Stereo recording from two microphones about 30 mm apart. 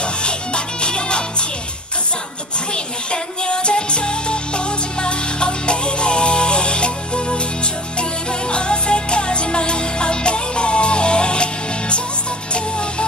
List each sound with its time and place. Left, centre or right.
0.8 s music: left
3.1 s music: left
8.5 s music: left